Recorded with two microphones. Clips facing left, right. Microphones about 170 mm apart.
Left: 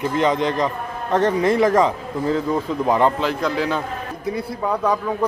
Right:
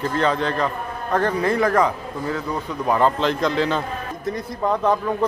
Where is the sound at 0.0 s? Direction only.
15° left (ahead or behind).